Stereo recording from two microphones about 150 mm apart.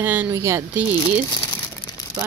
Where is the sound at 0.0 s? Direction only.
10° right (ahead or behind).